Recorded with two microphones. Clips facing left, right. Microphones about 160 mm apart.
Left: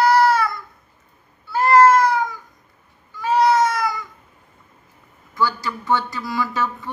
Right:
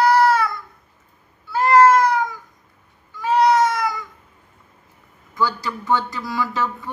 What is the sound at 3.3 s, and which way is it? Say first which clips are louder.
Cat: right 1 dB; 20° right (ahead or behind).